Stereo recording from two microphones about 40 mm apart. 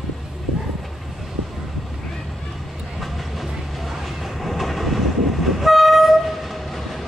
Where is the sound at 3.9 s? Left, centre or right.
Centre.